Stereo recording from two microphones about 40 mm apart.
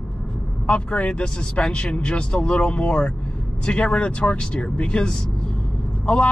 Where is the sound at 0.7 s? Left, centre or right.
Left.